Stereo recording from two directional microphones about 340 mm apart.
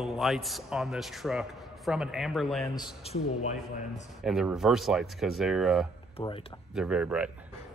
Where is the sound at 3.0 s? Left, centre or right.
Centre.